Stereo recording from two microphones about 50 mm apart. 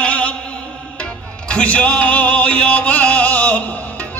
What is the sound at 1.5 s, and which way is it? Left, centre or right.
Music, left.